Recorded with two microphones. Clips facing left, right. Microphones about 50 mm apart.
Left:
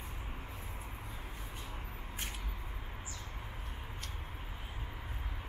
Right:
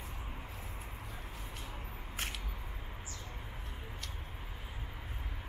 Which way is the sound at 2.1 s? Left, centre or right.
Right.